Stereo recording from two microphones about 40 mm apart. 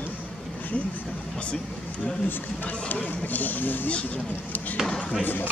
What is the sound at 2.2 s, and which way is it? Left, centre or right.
Speech, left.